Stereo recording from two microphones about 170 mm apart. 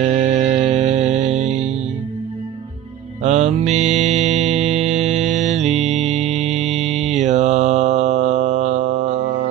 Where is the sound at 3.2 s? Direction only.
40° right (ahead or behind).